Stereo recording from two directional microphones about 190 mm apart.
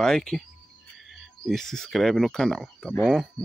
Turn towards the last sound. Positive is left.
turn(degrees=0)  # may be behind; listen again after turning